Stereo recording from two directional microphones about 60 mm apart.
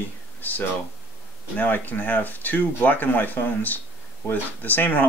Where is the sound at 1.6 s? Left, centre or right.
Left.